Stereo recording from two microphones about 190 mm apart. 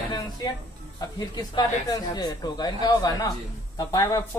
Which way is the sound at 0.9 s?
20° left (ahead or behind).